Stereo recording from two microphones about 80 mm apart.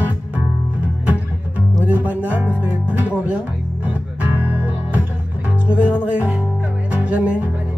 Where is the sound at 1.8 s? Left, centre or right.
Centre.